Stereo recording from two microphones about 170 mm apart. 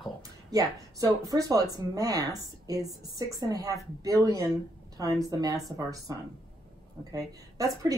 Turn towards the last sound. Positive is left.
turn(degrees=-20)  # may be behind; listen again after turning